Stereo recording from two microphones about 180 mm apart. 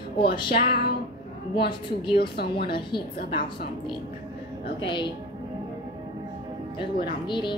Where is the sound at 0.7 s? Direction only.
60° left (ahead or behind).